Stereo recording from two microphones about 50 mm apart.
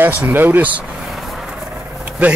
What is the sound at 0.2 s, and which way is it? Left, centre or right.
Speech, right.